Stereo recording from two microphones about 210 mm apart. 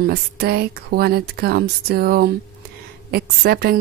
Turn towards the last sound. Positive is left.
turn(degrees=-50)  # may be behind; listen again after turning